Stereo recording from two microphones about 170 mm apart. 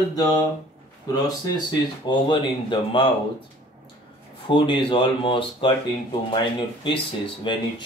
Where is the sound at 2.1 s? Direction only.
25° left (ahead or behind).